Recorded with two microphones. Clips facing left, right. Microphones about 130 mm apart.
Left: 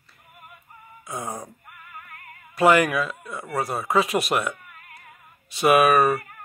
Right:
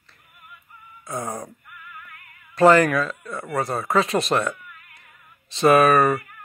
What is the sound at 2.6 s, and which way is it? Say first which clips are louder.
Speech: right 3 dB; 10° left (ahead or behind).